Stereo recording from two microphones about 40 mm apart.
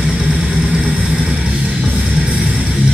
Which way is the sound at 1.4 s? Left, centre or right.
Right.